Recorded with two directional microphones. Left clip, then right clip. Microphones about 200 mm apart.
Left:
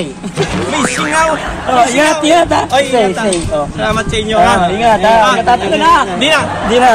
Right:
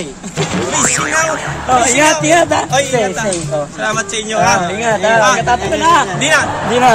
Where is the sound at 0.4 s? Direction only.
Centre (ahead or behind).